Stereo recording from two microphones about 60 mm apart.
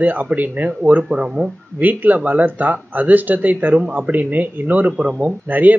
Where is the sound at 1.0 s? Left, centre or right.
Centre.